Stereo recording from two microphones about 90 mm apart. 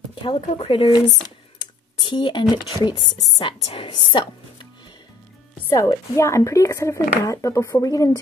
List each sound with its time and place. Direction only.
0.1 s speech: 80° left
2.0 s speech: 60° left (ahead or behind)
3.4 s a woman's voice: 75° left (ahead or behind)
5.7 s speech: 35° left (ahead or behind)